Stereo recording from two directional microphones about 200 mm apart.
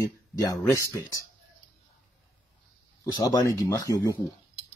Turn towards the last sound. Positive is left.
turn(degrees=15)  # may be behind; listen again after turning